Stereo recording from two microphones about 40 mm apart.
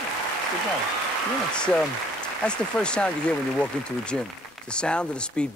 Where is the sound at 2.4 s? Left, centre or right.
Left.